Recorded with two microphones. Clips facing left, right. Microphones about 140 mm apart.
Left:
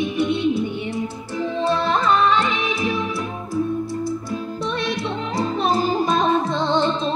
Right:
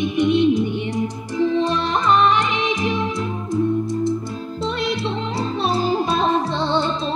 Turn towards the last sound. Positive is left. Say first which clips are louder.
# even
turn(degrees=-35)  # may be behind; listen again after turning